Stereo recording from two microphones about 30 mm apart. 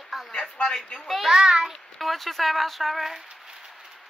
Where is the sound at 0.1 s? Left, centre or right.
Centre.